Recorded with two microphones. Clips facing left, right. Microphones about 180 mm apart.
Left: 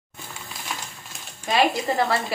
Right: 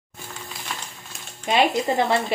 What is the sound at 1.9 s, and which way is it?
Speech, 20° right (ahead or behind).